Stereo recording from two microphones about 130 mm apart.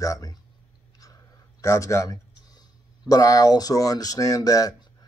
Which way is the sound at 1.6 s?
20° left (ahead or behind).